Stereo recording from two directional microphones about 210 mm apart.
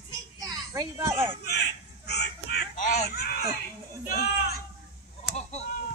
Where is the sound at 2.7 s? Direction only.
45° left (ahead or behind).